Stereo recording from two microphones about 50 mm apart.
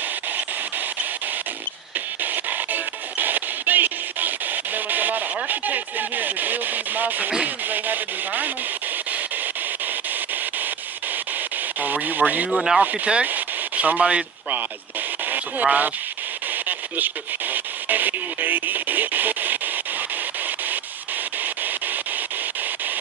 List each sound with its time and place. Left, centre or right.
2.3 s music: right
4.7 s radio: right
11.8 s radio: right
12.4 s speech: centre
12.8 s speech: right
15.6 s speech: right
16.6 s radio: right